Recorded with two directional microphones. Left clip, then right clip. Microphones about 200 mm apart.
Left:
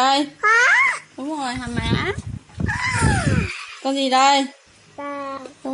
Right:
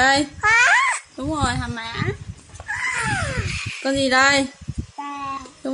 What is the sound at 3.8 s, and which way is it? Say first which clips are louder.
Speech: even; 15° right (ahead or behind).